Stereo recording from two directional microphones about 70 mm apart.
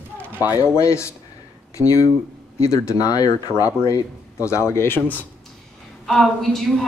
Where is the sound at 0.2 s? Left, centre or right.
Right.